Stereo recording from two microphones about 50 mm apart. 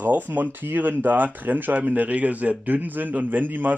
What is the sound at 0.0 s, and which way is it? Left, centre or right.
Speech, right.